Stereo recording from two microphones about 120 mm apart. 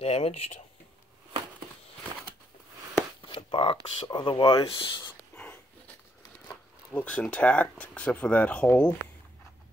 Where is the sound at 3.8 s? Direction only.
40° left (ahead or behind).